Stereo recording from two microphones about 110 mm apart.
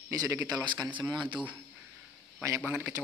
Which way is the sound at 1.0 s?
45° right (ahead or behind).